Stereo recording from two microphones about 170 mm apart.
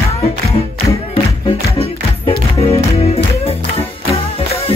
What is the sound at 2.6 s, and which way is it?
Music, 35° left (ahead or behind).